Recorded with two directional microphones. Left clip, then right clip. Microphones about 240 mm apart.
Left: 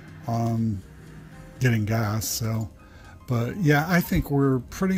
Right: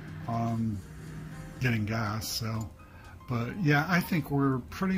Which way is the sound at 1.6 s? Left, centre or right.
Left.